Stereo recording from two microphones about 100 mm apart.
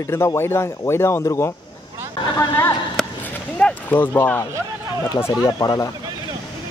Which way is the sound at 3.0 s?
5° left (ahead or behind).